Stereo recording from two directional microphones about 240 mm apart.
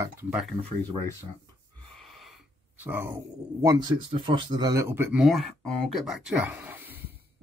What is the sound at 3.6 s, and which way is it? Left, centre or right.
Speech, centre.